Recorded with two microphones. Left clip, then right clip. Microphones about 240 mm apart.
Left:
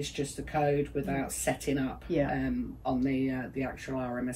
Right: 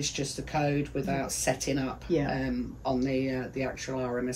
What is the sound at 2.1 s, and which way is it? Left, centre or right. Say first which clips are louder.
Speech: right 1 dB; centre.